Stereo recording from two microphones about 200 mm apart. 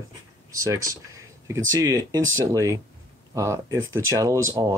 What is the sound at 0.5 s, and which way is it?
Speech, 15° right (ahead or behind).